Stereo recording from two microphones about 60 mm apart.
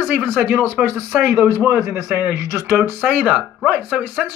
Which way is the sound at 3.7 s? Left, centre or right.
Right.